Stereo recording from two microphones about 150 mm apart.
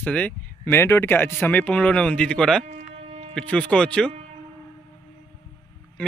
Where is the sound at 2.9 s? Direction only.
45° right (ahead or behind).